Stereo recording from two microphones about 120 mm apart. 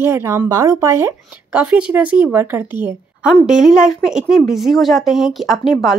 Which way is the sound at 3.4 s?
5° right (ahead or behind).